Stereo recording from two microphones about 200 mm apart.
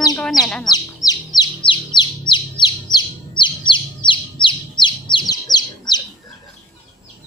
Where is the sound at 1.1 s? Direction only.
20° left (ahead or behind).